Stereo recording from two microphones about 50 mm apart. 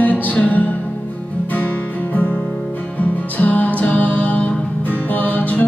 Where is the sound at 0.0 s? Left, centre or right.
Left.